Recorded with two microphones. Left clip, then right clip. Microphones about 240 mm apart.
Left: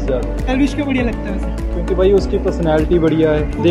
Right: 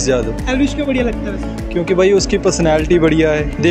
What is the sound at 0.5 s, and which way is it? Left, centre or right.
Speech, centre.